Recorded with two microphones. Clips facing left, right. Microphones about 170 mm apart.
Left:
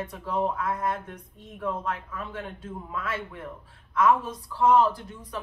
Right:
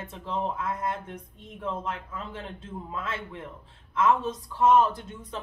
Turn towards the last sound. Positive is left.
turn(degrees=-25)  # may be behind; listen again after turning